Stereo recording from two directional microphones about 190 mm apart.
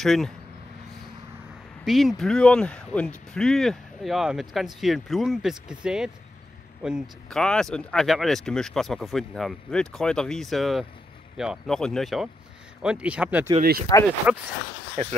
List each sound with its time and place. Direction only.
0.0 s speech: centre (ahead or behind)
1.9 s speech: centre (ahead or behind)
13.6 s speech: 50° right (ahead or behind)
14.3 s speech: 5° right (ahead or behind)